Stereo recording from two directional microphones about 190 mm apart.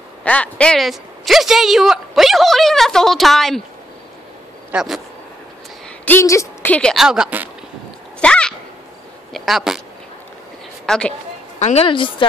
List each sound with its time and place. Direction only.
0.2 s a woman's voice: 5° left (ahead or behind)
4.7 s a woman's voice: centre (ahead or behind)
6.0 s a woman's voice: 15° left (ahead or behind); by 7.4 s 5° right (ahead or behind)
8.2 s a sound: 5° left (ahead or behind)
9.3 s speech: centre (ahead or behind)
10.9 s a woman's voice: 5° left (ahead or behind)
11.6 s a woman's voice: 30° left (ahead or behind)